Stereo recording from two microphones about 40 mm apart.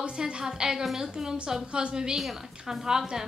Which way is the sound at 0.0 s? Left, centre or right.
Centre.